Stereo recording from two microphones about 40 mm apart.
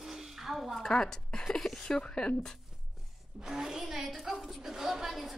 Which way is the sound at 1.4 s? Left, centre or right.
Centre.